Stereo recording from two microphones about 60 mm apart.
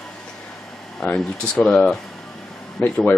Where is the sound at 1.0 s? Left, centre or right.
Centre.